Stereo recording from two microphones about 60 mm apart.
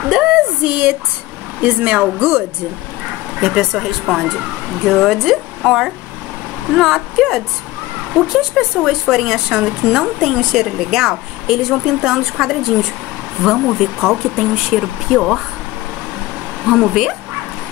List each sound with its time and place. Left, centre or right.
0.1 s a sound: centre
1.6 s speech: right
3.3 s speech: centre
16.6 s speech: centre